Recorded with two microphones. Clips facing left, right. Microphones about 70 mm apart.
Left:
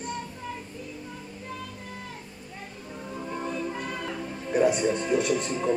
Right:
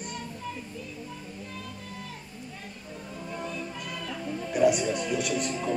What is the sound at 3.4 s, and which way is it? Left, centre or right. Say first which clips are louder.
Music: left 4 dB; left.